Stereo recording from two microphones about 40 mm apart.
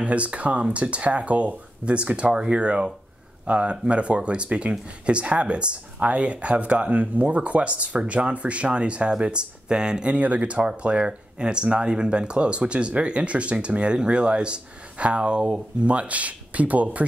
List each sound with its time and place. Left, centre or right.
0.0 s speech: right
10.1 s speech: right
15.9 s speech: right